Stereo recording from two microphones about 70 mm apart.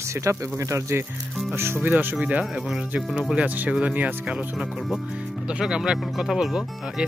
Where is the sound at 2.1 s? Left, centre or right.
Centre.